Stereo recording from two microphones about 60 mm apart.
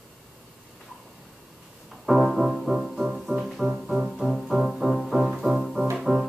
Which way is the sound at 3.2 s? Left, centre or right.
Centre.